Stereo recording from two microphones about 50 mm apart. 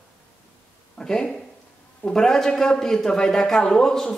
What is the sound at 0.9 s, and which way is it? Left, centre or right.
A man's voice, centre.